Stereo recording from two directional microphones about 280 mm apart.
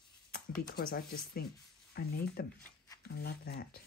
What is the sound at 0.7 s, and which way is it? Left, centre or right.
Speech, left.